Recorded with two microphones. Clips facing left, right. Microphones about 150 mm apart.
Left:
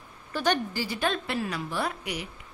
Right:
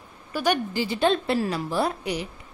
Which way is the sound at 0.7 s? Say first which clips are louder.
Right 6 dB; 25° right (ahead or behind).